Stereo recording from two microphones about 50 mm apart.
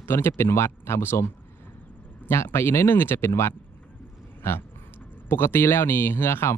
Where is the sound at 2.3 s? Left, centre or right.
Left.